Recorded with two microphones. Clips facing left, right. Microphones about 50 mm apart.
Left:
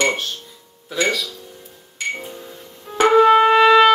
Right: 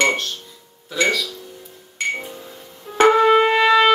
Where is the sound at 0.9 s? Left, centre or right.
Centre.